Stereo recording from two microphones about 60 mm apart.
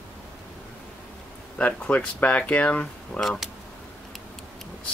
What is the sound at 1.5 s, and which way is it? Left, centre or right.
Speech, left.